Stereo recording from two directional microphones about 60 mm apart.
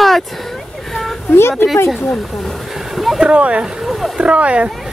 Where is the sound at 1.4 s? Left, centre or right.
Left.